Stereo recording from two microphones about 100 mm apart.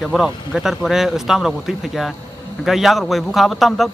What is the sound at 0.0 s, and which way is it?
A man's voice, centre (ahead or behind).